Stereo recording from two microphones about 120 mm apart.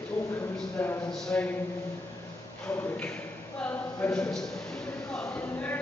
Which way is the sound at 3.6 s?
15° left (ahead or behind).